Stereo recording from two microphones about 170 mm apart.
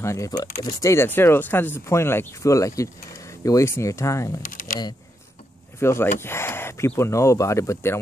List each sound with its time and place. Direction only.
0.0 s speech: 20° left (ahead or behind)
5.8 s speech: 15° left (ahead or behind)